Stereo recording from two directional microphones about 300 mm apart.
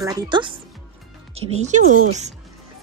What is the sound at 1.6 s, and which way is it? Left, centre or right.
Speech, right.